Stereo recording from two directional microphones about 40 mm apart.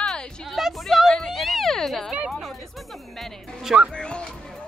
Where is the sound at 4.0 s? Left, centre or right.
Left.